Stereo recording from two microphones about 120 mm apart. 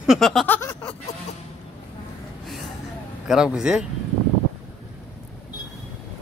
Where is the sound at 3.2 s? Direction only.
5° right (ahead or behind).